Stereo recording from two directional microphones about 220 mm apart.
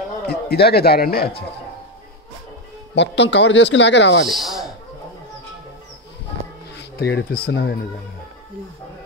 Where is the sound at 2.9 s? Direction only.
50° left (ahead or behind).